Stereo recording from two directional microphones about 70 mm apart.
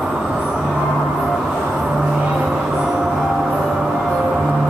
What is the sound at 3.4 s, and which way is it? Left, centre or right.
Music, centre.